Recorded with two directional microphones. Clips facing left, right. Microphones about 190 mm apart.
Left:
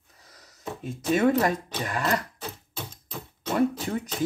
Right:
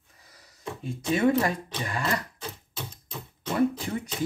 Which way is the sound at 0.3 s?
40° left (ahead or behind).